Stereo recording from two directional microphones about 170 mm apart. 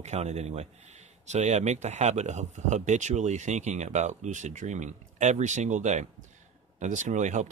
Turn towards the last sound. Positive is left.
turn(degrees=-45)  # may be behind; listen again after turning